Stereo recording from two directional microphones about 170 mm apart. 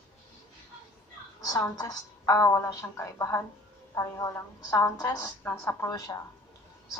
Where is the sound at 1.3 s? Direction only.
20° left (ahead or behind).